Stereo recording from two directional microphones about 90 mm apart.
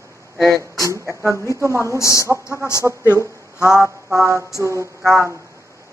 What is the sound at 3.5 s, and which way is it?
Mantra, 30° left (ahead or behind).